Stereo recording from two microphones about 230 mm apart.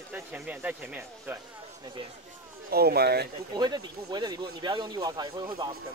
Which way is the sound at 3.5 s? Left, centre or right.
Centre.